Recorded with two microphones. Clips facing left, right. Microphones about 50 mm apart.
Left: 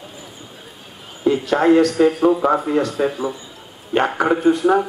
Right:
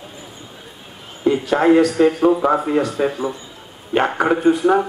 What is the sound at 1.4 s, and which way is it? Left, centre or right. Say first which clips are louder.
A man's voice: even; centre.